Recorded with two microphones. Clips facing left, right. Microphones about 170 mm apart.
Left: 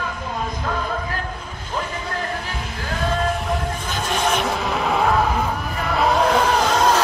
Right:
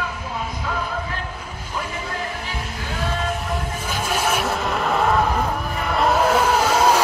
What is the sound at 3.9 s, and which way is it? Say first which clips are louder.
Vehicle: even; 5° right (ahead or behind).